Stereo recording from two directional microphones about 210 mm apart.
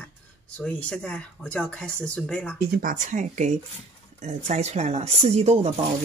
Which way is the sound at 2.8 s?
40° right (ahead or behind).